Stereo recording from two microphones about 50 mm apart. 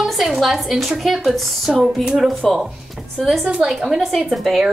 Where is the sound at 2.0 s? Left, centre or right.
Centre.